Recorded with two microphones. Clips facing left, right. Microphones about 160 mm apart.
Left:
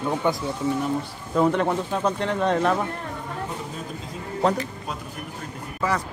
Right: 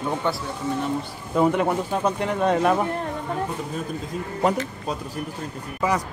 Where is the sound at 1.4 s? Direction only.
10° right (ahead or behind).